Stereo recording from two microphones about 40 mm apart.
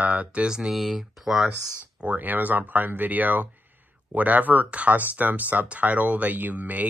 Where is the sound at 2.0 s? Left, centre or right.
Right.